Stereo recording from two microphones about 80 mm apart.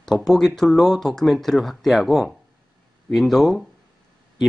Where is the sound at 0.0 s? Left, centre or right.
Centre.